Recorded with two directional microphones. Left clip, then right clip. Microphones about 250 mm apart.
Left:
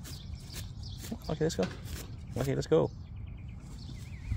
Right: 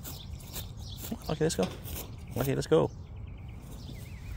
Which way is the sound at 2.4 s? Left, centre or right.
Centre.